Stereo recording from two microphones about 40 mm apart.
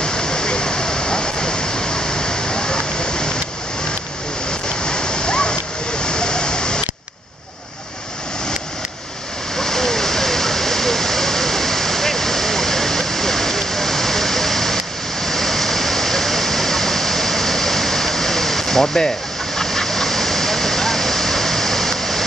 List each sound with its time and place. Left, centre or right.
0.0 s a sound: centre
4.5 s waterfall: centre
9.6 s waterfall: centre